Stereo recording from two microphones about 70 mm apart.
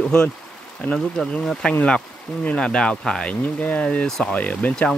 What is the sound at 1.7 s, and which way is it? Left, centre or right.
Speech, left.